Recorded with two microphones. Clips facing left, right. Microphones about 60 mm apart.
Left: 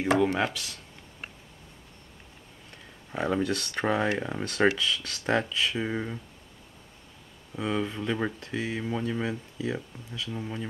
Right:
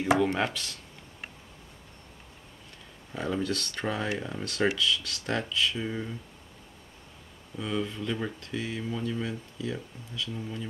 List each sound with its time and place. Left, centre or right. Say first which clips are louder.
0.2 s speech: left 1 dB; centre
3.2 s speech: left 3 dB; left
7.5 s speech: left 2 dB; left